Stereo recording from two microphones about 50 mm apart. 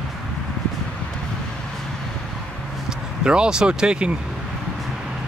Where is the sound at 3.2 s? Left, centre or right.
Centre.